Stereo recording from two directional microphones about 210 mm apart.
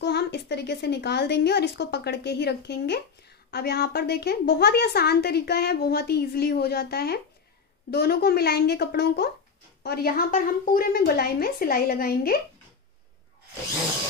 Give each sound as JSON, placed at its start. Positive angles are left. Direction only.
{"t": 0.0, "sound": "a woman's voice", "side_deg": 55}